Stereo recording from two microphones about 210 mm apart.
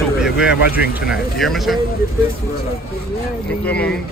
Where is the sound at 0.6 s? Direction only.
45° left (ahead or behind).